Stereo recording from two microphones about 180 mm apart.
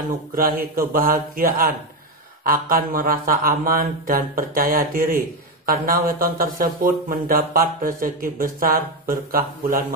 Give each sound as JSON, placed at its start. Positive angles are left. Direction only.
{"t": 0.4, "sound": "speech", "side_deg": -55}